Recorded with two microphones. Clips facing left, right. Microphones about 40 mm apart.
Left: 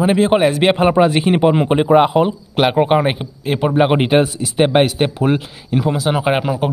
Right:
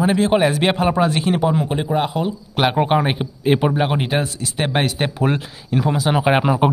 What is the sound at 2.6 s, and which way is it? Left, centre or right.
Speech, centre.